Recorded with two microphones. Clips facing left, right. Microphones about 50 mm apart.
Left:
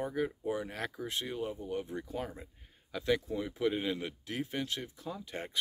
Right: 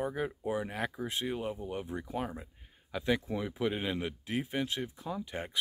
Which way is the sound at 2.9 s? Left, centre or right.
Centre.